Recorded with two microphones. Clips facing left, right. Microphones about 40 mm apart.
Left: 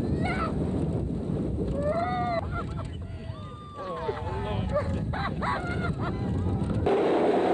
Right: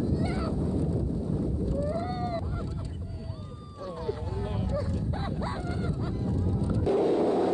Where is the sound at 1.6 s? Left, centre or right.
Left.